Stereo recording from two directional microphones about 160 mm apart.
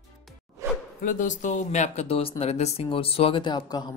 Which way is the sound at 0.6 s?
20° right (ahead or behind).